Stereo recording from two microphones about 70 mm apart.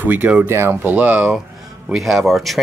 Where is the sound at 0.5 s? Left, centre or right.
Right.